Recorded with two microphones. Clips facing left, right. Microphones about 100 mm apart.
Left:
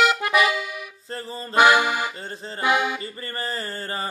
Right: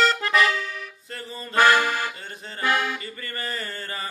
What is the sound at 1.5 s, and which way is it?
Accordion, 15° left (ahead or behind).